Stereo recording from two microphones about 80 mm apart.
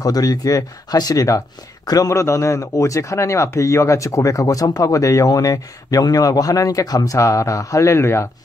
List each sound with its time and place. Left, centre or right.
0.0 s speech: left